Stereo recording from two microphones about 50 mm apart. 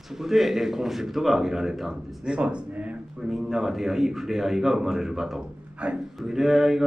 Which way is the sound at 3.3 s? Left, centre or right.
Centre.